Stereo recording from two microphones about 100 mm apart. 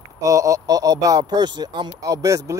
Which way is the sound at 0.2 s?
35° right (ahead or behind).